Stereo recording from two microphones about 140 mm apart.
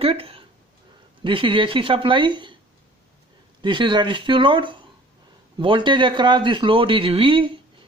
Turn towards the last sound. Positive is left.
turn(degrees=-35)  # may be behind; listen again after turning